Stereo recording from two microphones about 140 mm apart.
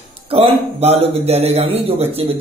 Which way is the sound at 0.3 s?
45° right (ahead or behind).